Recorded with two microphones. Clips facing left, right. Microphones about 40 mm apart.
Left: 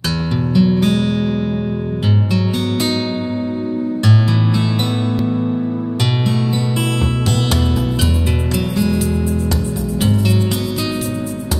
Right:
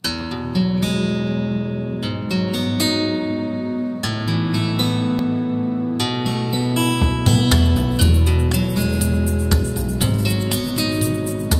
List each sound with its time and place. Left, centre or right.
0.6 s music: centre
2.3 s music: centre
7.0 s music: centre
8.5 s music: centre